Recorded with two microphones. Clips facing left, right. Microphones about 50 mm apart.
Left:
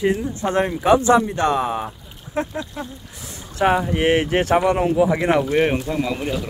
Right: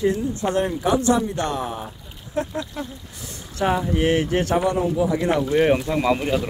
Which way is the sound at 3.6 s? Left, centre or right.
Left.